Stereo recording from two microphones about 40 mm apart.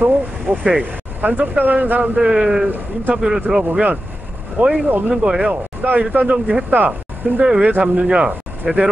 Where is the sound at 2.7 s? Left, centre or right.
Right.